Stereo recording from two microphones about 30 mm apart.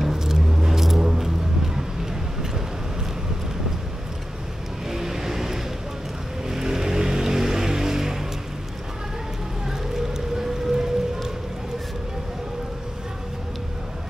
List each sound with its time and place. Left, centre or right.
0.0 s vehicle: centre
1.0 s music: centre
4.8 s vehicle: centre
9.7 s boat: centre